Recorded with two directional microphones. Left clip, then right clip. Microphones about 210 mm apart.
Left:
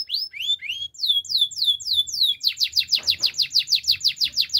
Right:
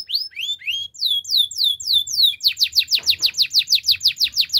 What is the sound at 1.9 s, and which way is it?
Bird, 15° right (ahead or behind).